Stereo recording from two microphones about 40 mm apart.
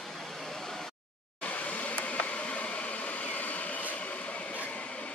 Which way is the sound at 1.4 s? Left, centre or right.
Left.